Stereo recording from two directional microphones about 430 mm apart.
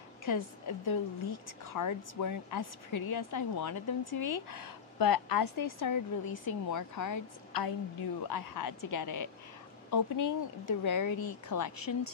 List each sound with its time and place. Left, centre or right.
0.2 s a woman's voice: left
2.9 s speech: left
3.6 s a woman's voice: left
4.2 s speech: left
4.9 s a woman's voice: left
9.8 s speech: left
10.6 s a woman's voice: left
11.1 s speech: left
11.5 s speech: left